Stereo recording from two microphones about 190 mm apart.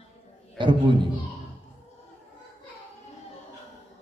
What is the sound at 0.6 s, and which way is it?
Speech, 25° right (ahead or behind).